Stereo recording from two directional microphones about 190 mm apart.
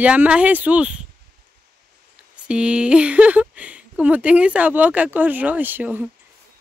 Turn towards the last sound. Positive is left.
turn(degrees=-10)  # may be behind; listen again after turning